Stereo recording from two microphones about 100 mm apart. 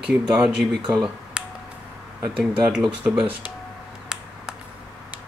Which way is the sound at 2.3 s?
5° right (ahead or behind).